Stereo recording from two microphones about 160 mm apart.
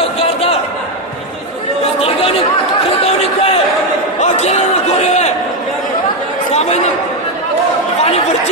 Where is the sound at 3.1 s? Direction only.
40° left (ahead or behind).